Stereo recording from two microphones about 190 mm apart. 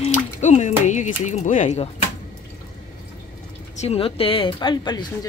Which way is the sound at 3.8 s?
30° left (ahead or behind).